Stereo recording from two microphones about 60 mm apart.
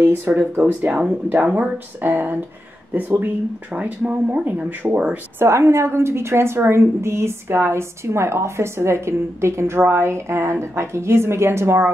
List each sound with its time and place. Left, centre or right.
0.0 s speech: right
4.9 s speech: centre
5.4 s a woman's voice: right